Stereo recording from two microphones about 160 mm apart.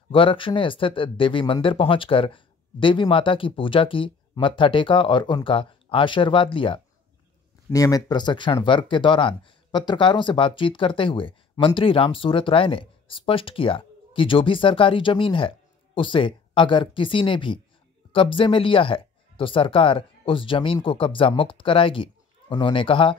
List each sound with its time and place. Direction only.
0.1 s speech: 35° left (ahead or behind)
7.7 s speech: 20° left (ahead or behind)